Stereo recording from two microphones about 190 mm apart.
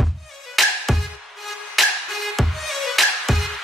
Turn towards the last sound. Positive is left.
turn(degrees=0)  # may be behind; listen again after turning